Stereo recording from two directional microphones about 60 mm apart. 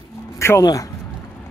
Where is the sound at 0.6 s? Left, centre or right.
Left.